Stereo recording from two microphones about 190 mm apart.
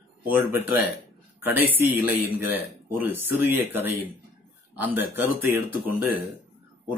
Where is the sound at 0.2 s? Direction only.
10° right (ahead or behind).